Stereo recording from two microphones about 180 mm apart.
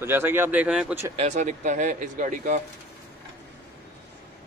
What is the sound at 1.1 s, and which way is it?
Speech, 40° right (ahead or behind).